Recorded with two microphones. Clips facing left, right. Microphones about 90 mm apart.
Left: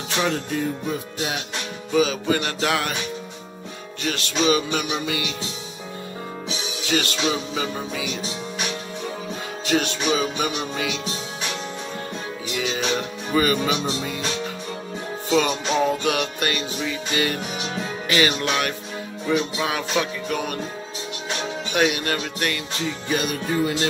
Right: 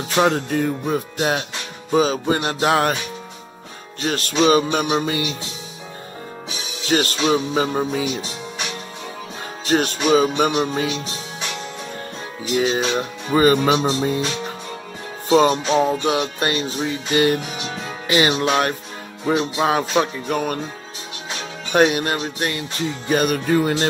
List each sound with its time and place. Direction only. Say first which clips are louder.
0.1 s music: right 6 dB; 45° right (ahead or behind)
1.9 s music: right 3 dB; 35° right (ahead or behind)
4.0 s music: right 5 dB; 40° right (ahead or behind)
6.9 s music: right 5 dB; 40° right (ahead or behind)
9.7 s music: right 5 dB; 40° right (ahead or behind)
12.5 s music: right 6 dB; 35° right (ahead or behind)
15.2 s music: right 6 dB; 40° right (ahead or behind)
15.7 s music: right 3 dB; 25° right (ahead or behind)
18.0 s speech: right 4 dB; 25° right (ahead or behind)
20.0 s music: right 4 dB; 40° right (ahead or behind)
21.7 s music: right 5 dB; 35° right (ahead or behind)
23.0 s music: right 7 dB; 45° right (ahead or behind)
23.3 s speech: right 5 dB; 65° right (ahead or behind)